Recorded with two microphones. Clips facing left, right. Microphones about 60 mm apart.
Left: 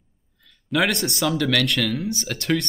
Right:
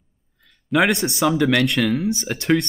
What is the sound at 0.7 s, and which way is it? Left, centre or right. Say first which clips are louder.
Speech: right 4 dB; centre.